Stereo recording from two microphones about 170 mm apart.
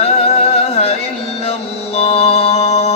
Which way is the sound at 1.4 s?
40° left (ahead or behind).